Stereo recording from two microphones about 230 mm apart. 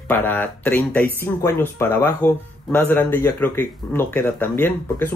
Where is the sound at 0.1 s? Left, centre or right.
Centre.